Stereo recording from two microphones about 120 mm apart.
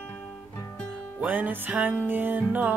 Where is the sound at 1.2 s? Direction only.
15° right (ahead or behind).